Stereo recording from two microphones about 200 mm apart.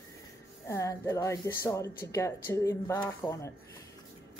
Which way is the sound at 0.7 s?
15° left (ahead or behind).